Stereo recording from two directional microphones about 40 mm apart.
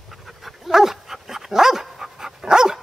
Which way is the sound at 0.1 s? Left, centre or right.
Centre.